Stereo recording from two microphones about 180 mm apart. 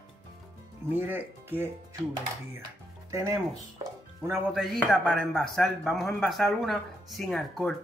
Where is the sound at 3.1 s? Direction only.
20° right (ahead or behind).